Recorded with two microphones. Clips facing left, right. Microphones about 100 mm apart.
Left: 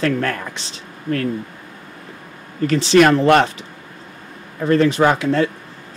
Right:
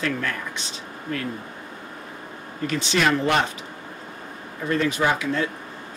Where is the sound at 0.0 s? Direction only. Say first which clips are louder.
Left 7 dB; 55° left (ahead or behind).